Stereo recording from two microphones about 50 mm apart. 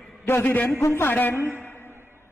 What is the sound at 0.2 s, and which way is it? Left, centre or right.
Speech, left.